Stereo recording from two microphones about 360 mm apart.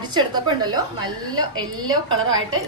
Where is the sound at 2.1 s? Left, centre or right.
Right.